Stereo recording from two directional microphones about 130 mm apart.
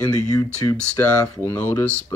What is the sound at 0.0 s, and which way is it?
Speech, 25° left (ahead or behind).